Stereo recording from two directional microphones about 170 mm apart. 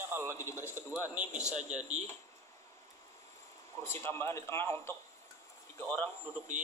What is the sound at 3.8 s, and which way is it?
A man's voice, 15° left (ahead or behind).